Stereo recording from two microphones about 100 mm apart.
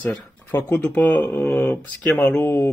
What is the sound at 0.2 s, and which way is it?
Speech, 15° left (ahead or behind).